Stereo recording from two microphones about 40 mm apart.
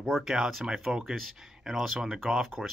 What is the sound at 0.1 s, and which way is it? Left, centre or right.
A man's voice, centre.